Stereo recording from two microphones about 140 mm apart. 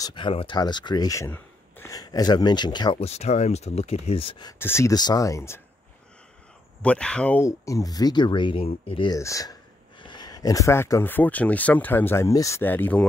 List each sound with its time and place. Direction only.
0.0 s speech: 35° left (ahead or behind)
3.0 s speech: 50° left (ahead or behind)
4.6 s speech: 15° left (ahead or behind)
6.8 s speech: 10° left (ahead or behind)
7.4 s speech: 25° left (ahead or behind)
9.2 s speech: 25° left (ahead or behind)